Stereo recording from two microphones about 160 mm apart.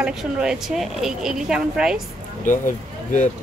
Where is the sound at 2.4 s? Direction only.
50° left (ahead or behind).